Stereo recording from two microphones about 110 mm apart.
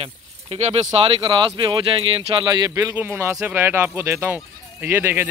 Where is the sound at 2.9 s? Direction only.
20° right (ahead or behind).